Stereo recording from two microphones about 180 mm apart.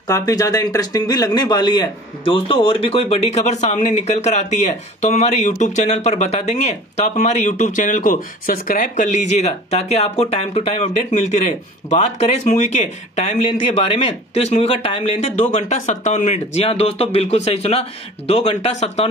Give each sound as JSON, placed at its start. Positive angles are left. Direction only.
{"t": 0.1, "sound": "speech", "side_deg": 20}